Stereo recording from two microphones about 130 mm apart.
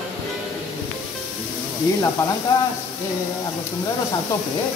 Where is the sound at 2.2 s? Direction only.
20° left (ahead or behind).